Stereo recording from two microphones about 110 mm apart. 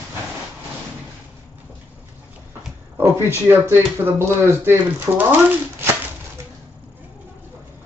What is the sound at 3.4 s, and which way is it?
Speech, 20° right (ahead or behind).